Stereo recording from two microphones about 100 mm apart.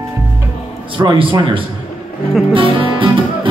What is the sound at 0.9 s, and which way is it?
Speech, 50° right (ahead or behind).